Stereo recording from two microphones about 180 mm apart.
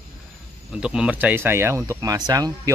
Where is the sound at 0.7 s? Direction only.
5° right (ahead or behind).